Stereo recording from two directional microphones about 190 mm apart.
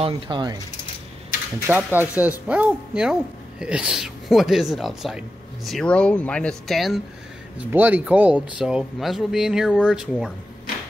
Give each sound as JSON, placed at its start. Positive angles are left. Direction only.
{"t": 0.0, "sound": "speech", "side_deg": -25}
{"t": 1.7, "sound": "speech", "side_deg": -10}